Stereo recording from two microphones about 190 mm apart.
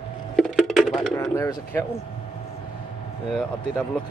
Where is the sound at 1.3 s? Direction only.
10° left (ahead or behind).